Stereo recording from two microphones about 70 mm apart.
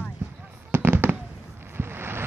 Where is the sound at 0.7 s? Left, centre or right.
Right.